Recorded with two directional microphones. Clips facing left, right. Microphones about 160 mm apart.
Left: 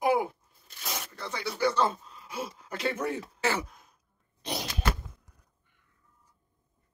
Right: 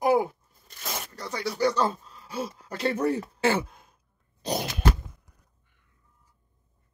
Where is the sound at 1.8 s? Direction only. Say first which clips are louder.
Right 1 dB; 35° right (ahead or behind).